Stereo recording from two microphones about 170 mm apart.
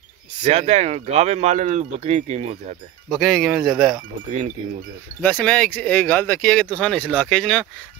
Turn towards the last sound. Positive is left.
turn(degrees=5)  # may be behind; listen again after turning